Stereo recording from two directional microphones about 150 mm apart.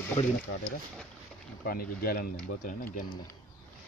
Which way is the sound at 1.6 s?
75° left (ahead or behind).